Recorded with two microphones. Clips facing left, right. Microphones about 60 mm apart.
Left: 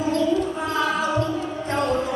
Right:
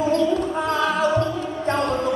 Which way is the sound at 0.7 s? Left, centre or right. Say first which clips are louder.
Right 5 dB; right.